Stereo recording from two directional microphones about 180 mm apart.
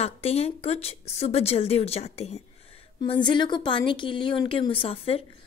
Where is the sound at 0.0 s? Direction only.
35° left (ahead or behind).